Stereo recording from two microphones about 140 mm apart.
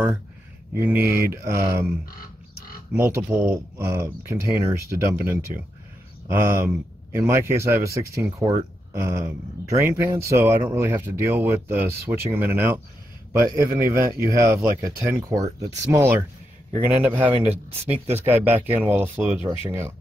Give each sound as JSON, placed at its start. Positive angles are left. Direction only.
{"t": 0.7, "sound": "a man's voice", "side_deg": -15}